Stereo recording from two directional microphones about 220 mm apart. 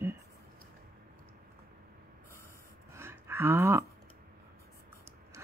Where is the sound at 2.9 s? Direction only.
10° right (ahead or behind).